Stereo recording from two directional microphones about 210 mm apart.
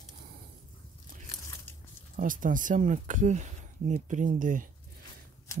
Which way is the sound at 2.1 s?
40° right (ahead or behind).